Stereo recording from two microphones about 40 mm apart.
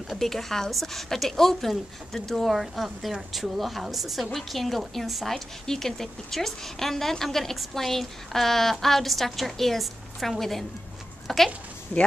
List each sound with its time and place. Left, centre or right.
0.2 s a woman's voice: centre
11.9 s speech: left